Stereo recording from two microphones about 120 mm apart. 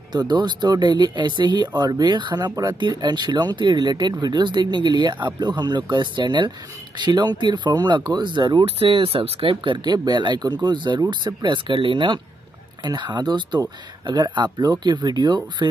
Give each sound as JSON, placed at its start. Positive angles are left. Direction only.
{"t": 0.1, "sound": "speech", "side_deg": -35}
{"t": 8.6, "sound": "speech", "side_deg": -50}